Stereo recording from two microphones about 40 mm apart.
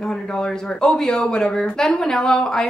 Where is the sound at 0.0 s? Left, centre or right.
Centre.